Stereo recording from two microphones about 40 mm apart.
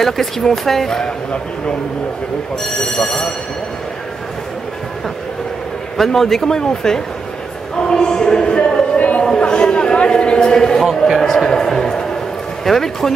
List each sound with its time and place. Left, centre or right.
0.0 s a man's voice: centre
2.8 s a man's voice: centre
5.9 s a man's voice: centre
7.7 s a sound: centre
8.9 s a sound: left; by 10.8 s centre
10.8 s a man's voice: centre